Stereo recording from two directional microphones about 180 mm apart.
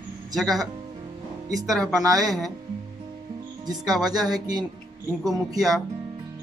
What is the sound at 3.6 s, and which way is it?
Speech, 20° right (ahead or behind).